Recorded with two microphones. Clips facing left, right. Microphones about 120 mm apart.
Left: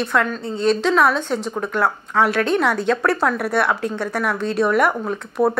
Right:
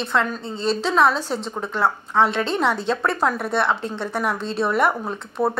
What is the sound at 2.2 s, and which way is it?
A woman's voice, 25° right (ahead or behind).